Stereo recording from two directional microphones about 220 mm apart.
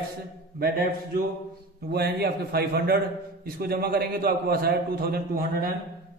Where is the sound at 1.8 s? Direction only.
45° right (ahead or behind).